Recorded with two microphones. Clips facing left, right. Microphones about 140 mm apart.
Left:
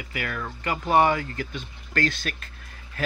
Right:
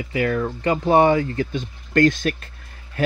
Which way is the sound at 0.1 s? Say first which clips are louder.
Right 11 dB; 30° right (ahead or behind).